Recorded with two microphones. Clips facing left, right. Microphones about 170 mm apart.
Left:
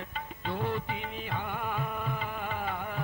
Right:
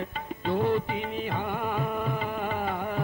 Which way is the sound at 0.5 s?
30° right (ahead or behind).